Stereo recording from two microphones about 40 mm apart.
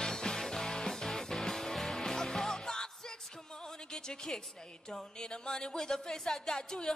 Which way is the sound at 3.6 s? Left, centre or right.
Centre.